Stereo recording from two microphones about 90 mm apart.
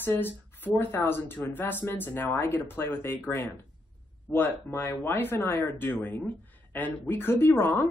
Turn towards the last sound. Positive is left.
turn(degrees=25)  # may be behind; listen again after turning